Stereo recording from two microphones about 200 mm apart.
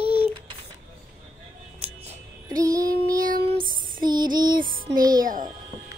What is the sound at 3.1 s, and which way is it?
Child singing, 45° right (ahead or behind).